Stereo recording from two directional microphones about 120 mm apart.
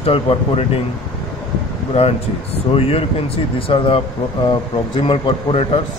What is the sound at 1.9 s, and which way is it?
Speech, 55° left (ahead or behind).